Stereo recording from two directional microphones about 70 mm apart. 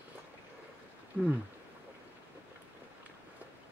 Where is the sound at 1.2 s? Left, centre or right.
Centre.